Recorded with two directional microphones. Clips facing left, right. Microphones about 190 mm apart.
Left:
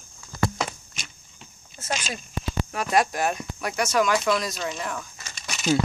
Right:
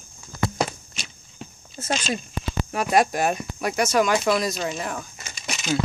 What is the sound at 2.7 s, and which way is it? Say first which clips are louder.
Speech: right 3 dB; 15° right (ahead or behind).